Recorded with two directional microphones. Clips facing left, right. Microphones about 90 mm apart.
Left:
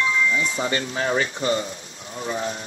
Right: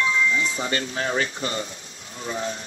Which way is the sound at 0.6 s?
30° left (ahead or behind).